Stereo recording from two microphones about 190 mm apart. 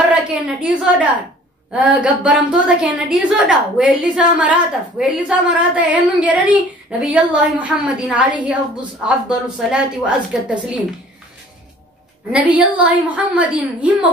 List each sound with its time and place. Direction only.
0.1 s a woman's voice: 5° right (ahead or behind)
9.6 s a woman's voice: 5° right (ahead or behind)
12.3 s a woman's voice: 10° right (ahead or behind)